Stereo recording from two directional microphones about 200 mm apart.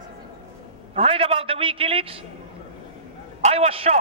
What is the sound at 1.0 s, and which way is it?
A man's voice, 30° right (ahead or behind).